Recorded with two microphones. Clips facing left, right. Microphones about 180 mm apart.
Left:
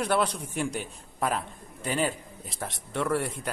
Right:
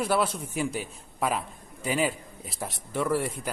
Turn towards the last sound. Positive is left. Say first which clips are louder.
# right 1 dB
turn(degrees=0)  # may be behind; listen again after turning